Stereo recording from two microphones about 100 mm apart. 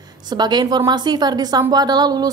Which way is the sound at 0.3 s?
45° right (ahead or behind).